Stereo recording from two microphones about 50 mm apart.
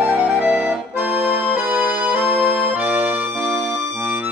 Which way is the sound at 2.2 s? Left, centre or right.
Right.